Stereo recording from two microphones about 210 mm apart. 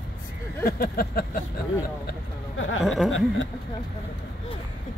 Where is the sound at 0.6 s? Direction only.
45° left (ahead or behind).